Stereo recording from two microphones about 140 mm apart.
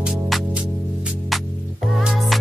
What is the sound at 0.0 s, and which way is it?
Music, 5° right (ahead or behind).